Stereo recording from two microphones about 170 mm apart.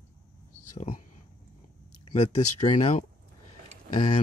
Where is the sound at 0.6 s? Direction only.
50° left (ahead or behind).